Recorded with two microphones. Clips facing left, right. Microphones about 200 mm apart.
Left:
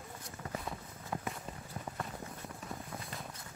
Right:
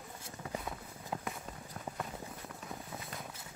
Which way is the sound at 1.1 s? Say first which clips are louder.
Left 1 dB; 20° right (ahead or behind).